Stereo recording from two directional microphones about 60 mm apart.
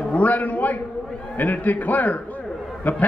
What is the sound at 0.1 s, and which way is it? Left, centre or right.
A man's voice, left.